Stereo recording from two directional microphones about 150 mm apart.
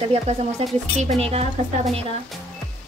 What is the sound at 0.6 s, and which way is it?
A woman's voice, 40° right (ahead or behind).